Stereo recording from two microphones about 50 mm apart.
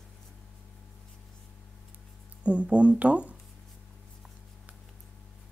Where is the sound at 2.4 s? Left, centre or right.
Right.